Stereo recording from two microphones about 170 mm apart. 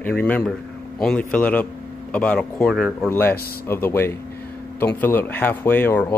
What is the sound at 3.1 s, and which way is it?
Speech, 10° left (ahead or behind).